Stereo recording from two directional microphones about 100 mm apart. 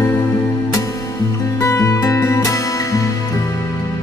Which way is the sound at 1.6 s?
30° left (ahead or behind).